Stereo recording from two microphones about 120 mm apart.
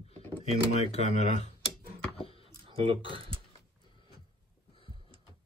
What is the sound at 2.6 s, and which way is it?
Speech, 50° right (ahead or behind).